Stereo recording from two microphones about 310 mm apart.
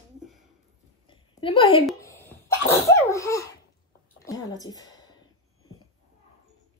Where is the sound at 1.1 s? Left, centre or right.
Centre.